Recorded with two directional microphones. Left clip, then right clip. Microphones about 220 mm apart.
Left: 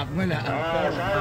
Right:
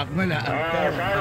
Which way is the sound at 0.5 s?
60° left (ahead or behind).